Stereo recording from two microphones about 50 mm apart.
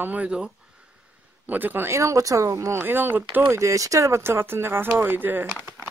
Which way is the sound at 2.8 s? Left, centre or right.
Right.